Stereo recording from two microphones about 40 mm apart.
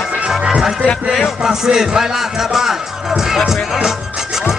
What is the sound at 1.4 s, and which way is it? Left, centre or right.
Speech, centre.